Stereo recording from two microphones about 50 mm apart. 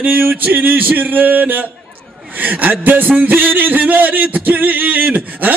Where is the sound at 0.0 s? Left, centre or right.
Right.